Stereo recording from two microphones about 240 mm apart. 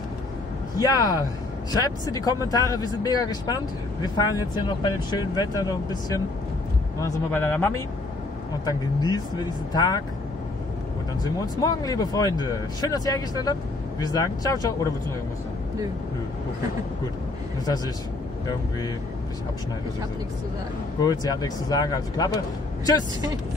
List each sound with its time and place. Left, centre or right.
0.7 s speech: centre
11.6 s speech: centre
21.0 s speech: centre